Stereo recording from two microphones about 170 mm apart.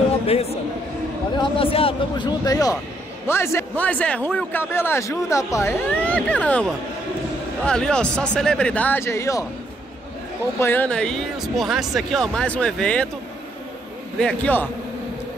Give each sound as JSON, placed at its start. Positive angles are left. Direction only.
{"t": 0.3, "sound": "a man's voice", "side_deg": 35}
{"t": 10.6, "sound": "speech", "side_deg": 10}
{"t": 14.2, "sound": "a man's voice", "side_deg": 10}